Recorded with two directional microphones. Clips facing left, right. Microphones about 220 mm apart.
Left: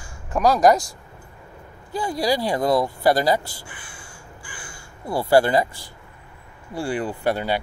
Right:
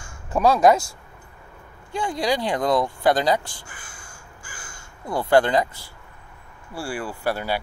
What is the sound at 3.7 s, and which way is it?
Crow, 40° right (ahead or behind).